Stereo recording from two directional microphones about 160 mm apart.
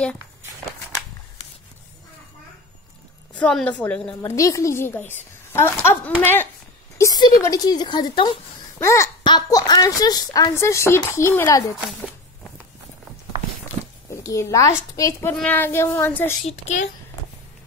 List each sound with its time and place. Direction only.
3.3 s a woman's voice: 5° left (ahead or behind)
4.4 s a woman's voice: 20° left (ahead or behind)
7.0 s speech: 25° left (ahead or behind)
8.7 s a child's voice: 15° left (ahead or behind)
14.2 s a woman's voice: 20° left (ahead or behind)
16.4 s a child's voice: 45° left (ahead or behind)